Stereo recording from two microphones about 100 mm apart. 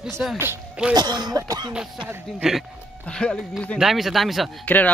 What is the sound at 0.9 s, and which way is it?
Cough, 45° right (ahead or behind).